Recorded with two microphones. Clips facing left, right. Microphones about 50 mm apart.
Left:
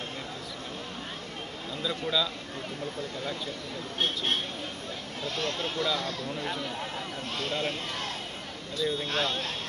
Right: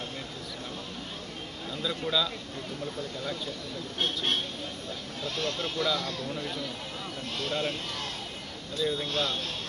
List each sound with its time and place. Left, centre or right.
1.8 s speech: centre
3.0 s speech: left